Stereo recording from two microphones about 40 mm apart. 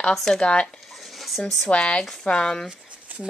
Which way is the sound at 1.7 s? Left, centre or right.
Left.